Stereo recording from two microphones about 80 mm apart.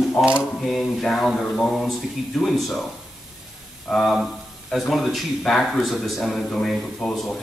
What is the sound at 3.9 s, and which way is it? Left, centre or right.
Speech, centre.